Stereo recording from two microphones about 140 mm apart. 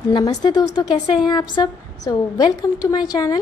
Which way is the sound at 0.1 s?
30° left (ahead or behind).